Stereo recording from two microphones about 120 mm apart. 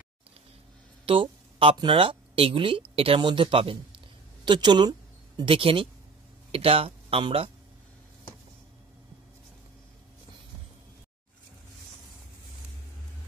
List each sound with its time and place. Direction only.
1.0 s speech: 45° right (ahead or behind)